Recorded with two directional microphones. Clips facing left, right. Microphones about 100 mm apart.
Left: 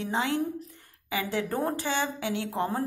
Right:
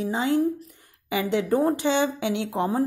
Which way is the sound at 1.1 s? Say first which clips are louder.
Right 7 dB; 20° right (ahead or behind).